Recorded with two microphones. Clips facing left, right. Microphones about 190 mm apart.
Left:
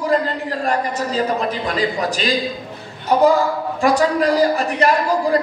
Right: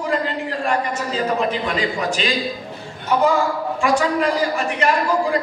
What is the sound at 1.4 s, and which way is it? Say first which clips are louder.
A man's voice: left 1 dB; 35° left (ahead or behind).